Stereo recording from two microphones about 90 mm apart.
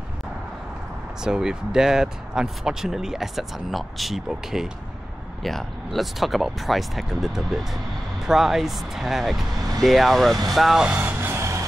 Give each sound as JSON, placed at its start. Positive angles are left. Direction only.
{"t": 1.2, "sound": "speech", "side_deg": -10}
{"t": 10.5, "sound": "vehicle", "side_deg": -5}